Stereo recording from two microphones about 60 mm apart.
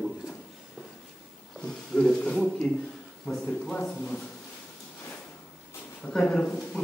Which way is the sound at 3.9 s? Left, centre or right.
Left.